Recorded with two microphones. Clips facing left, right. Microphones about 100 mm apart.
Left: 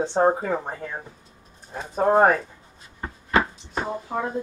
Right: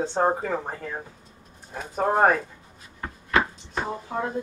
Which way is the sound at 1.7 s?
25° left (ahead or behind).